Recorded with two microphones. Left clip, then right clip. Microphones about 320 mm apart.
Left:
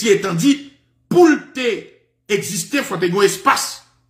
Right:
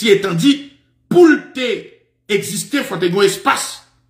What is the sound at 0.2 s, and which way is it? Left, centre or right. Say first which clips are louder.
Speech: right 2 dB; centre.